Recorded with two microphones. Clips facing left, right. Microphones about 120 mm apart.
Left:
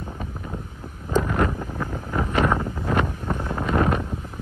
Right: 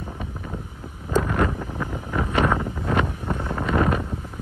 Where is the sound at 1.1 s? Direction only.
Centre (ahead or behind).